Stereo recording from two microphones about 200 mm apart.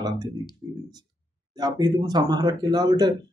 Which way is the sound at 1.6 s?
20° right (ahead or behind).